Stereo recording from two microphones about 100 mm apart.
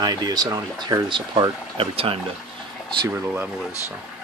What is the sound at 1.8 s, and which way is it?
Speech, 70° right (ahead or behind).